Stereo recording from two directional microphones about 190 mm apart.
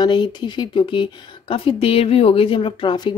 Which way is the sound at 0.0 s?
25° left (ahead or behind).